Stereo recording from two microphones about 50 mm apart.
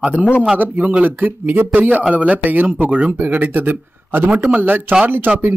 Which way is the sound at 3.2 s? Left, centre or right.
Right.